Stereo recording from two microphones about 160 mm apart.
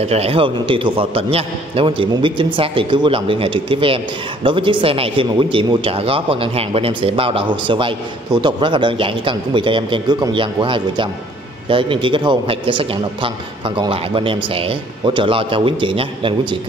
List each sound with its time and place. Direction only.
0.0 s speech: 40° right (ahead or behind)